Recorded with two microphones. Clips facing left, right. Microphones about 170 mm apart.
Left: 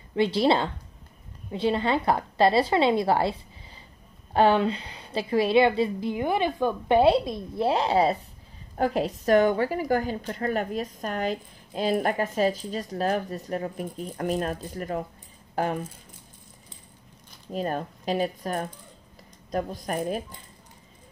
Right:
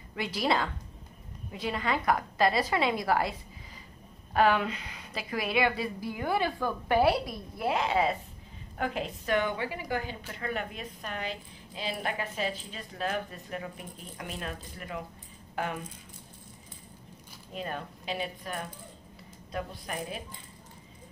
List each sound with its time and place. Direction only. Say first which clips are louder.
0.1 s a woman's voice: left 8 dB; 30° left (ahead or behind)
17.5 s a woman's voice: left 8 dB; 40° left (ahead or behind)